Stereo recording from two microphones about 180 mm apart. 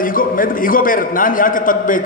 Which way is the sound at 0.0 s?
50° left (ahead or behind).